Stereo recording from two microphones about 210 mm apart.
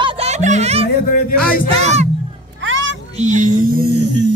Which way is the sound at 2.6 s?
65° right (ahead or behind).